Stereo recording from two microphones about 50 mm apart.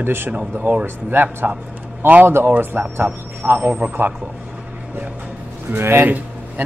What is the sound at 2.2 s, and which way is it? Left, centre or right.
Speech, right.